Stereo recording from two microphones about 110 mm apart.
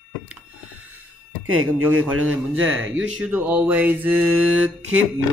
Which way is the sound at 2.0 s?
15° right (ahead or behind).